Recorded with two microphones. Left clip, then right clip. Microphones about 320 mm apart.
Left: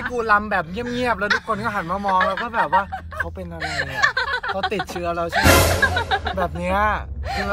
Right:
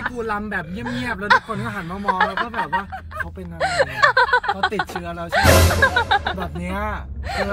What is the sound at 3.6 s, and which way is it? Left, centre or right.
Speech, centre.